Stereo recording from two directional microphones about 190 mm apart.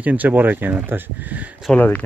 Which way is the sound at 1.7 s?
10° left (ahead or behind).